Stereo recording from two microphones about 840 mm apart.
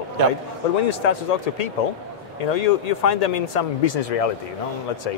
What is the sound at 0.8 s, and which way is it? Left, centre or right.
Speech, left.